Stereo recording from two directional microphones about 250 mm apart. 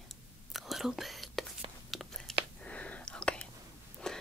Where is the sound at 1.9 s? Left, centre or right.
Centre.